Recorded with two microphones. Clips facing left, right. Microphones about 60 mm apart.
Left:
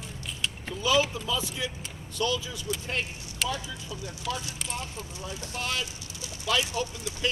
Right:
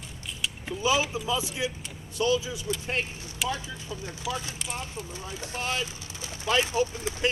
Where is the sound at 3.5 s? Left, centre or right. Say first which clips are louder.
Right 1 dB; right.